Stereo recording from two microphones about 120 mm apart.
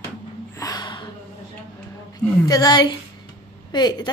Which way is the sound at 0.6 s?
35° left (ahead or behind).